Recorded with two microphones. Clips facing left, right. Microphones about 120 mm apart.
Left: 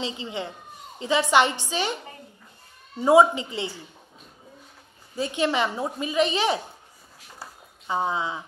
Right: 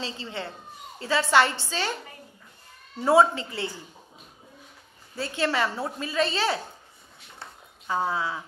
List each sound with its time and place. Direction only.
0.0 s a woman's voice: 15° left (ahead or behind)
5.1 s a woman's voice: 15° left (ahead or behind)
7.2 s a sound: 5° left (ahead or behind)
7.9 s speech: 20° left (ahead or behind)